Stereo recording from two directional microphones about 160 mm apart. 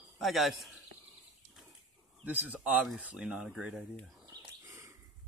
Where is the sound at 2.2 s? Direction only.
10° right (ahead or behind).